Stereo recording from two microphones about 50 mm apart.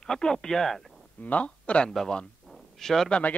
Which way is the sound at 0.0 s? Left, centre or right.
Centre.